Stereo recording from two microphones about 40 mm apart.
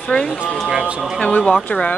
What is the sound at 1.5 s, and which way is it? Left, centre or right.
Speech, left.